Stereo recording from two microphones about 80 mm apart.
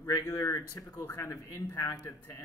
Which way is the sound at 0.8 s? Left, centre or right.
Left.